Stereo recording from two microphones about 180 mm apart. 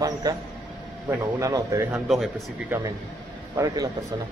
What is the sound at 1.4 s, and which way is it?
Speech, 20° right (ahead or behind).